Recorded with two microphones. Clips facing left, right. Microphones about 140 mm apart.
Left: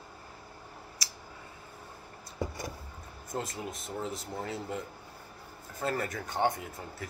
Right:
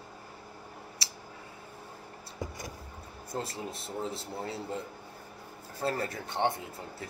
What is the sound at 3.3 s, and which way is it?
Speech, 30° right (ahead or behind).